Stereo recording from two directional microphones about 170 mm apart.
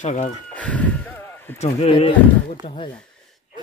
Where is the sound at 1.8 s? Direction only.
35° left (ahead or behind).